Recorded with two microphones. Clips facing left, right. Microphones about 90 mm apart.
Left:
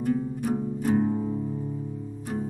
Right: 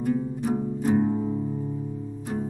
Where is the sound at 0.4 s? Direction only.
20° right (ahead or behind).